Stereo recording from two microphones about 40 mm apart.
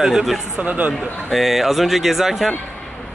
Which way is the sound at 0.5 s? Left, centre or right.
Right.